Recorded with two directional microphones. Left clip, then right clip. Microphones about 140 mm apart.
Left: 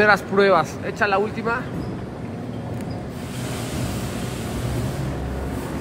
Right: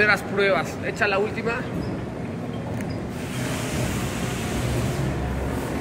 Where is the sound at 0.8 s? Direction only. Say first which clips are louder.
Left 2 dB; 20° left (ahead or behind).